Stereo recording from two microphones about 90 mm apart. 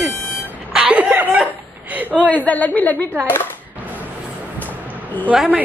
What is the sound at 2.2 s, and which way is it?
A woman's voice, 15° left (ahead or behind).